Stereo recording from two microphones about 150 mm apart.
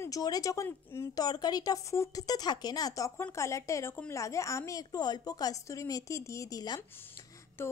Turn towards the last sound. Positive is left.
turn(degrees=15)  # may be behind; listen again after turning